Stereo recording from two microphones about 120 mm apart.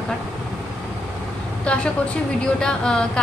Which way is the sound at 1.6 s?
10° left (ahead or behind).